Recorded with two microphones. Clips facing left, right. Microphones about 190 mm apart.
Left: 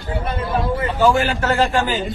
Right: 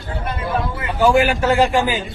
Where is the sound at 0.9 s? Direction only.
15° right (ahead or behind).